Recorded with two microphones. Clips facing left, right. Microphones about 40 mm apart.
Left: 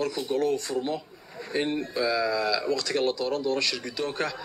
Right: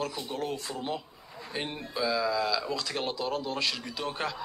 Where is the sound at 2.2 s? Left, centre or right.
Centre.